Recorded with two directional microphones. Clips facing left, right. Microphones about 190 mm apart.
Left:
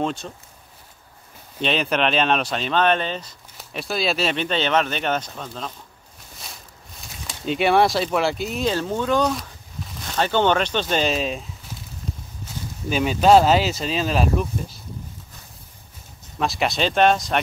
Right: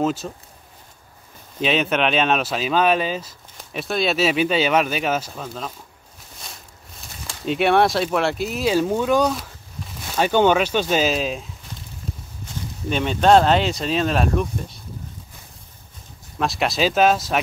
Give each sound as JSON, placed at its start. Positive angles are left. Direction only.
{"t": 0.0, "sound": "speech", "side_deg": -5}
{"t": 1.6, "sound": "speech", "side_deg": 0}
{"t": 7.4, "sound": "speech", "side_deg": 0}
{"t": 12.9, "sound": "speech", "side_deg": 5}
{"t": 16.3, "sound": "speech", "side_deg": 0}